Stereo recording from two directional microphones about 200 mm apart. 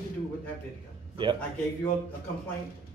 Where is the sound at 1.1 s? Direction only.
25° right (ahead or behind).